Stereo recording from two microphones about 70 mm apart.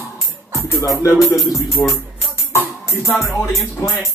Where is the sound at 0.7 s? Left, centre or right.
Left.